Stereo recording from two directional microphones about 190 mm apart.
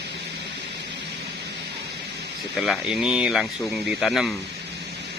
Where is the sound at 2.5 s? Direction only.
Centre (ahead or behind).